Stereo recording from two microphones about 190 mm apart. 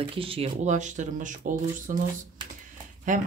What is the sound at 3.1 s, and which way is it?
Speech, 40° right (ahead or behind).